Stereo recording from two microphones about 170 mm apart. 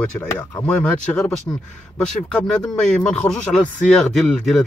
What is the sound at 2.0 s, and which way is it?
A man's voice, 5° left (ahead or behind).